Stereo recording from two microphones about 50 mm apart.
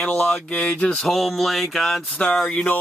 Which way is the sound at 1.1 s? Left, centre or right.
Centre.